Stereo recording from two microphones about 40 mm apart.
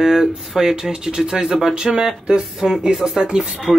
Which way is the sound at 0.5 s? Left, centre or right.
Centre.